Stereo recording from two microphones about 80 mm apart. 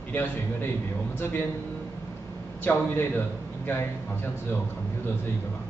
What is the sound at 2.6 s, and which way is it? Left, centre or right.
A man's voice, left.